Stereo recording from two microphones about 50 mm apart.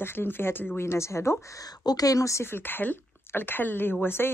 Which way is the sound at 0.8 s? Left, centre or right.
Left.